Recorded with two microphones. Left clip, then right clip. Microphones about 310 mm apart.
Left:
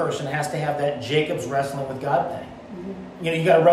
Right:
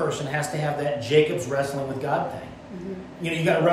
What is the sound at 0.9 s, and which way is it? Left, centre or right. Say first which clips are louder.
Speech: right 3 dB; centre.